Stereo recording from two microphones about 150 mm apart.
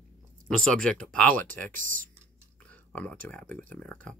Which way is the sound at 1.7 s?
60° right (ahead or behind).